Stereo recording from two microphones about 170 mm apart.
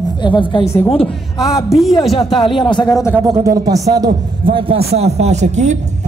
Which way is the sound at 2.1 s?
35° left (ahead or behind).